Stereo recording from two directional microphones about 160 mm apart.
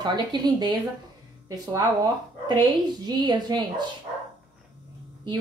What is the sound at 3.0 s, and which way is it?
Speech, 30° right (ahead or behind).